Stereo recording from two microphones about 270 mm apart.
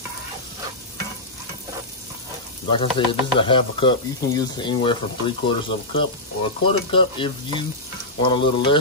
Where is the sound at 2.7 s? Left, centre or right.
Centre.